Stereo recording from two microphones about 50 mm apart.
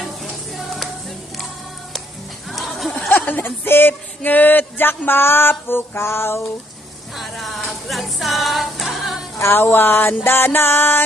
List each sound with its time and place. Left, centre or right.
0.0 s music: centre
3.1 s speech: left
7.2 s music: centre
9.4 s speech: left